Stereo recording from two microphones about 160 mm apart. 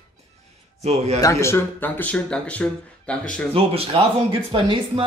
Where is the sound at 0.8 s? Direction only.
40° right (ahead or behind).